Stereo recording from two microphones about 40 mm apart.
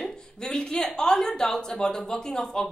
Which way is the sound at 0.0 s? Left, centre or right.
Centre.